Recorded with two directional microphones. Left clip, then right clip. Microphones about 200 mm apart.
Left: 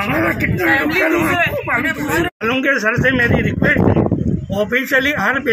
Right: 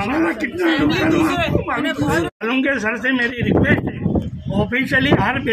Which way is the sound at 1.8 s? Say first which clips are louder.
Left 1 dB; 55° right (ahead or behind).